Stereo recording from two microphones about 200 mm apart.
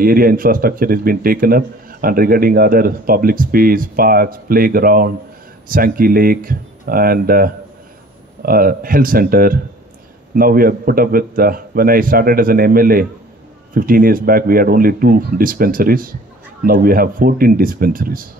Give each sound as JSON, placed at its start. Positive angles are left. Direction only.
{"t": 0.0, "sound": "speech", "side_deg": -45}